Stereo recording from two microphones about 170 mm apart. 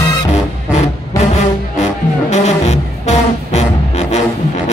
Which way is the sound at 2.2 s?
40° left (ahead or behind).